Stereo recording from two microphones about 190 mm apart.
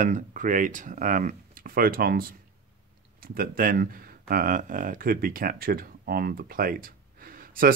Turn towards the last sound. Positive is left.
turn(degrees=-50)  # may be behind; listen again after turning